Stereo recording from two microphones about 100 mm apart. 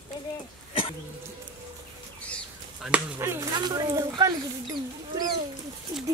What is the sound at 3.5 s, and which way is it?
Speech, 40° right (ahead or behind).